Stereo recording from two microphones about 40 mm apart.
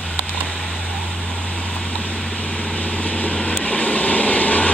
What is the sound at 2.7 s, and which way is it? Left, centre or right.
Vehicle, left.